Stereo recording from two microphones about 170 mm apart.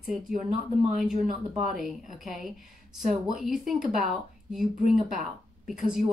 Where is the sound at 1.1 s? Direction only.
45° right (ahead or behind).